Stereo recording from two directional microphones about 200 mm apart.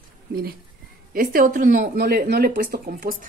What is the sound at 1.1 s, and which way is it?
Speech, 45° right (ahead or behind).